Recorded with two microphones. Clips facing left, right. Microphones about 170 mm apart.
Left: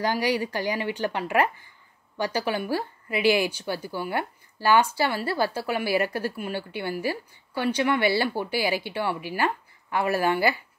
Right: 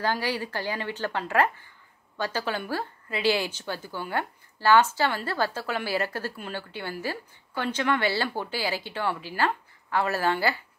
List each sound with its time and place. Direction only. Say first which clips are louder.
0.0 s speech: left 3 dB; 15° left (ahead or behind)